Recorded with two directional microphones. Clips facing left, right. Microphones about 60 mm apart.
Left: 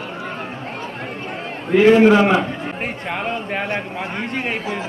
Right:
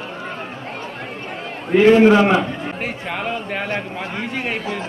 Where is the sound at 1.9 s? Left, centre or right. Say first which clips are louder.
Even; centre.